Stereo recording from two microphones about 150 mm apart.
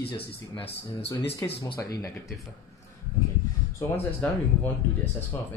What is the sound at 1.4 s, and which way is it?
Speech, 25° left (ahead or behind).